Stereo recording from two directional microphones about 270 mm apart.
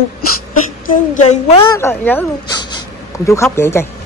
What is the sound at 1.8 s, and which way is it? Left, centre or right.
Speech, centre.